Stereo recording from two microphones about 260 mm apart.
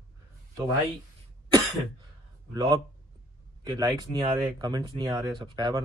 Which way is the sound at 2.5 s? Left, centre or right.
Centre.